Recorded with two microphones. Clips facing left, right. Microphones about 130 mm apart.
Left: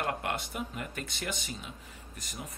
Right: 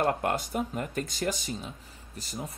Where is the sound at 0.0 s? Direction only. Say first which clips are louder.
Right 6 dB; 40° right (ahead or behind).